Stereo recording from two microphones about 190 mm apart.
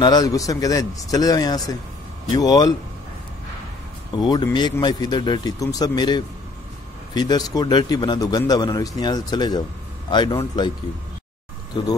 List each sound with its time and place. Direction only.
0.0 s a man's voice: 20° left (ahead or behind)
4.2 s a man's voice: 20° left (ahead or behind)